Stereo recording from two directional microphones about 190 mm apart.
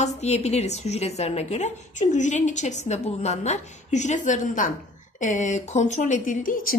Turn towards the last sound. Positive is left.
turn(degrees=45)  # may be behind; listen again after turning